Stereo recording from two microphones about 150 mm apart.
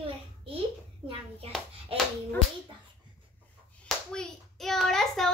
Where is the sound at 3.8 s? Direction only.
5° left (ahead or behind).